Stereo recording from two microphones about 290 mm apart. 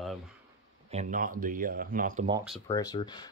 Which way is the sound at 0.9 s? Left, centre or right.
Right.